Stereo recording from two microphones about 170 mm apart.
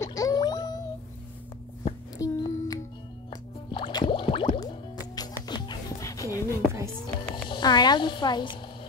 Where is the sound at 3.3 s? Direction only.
25° left (ahead or behind).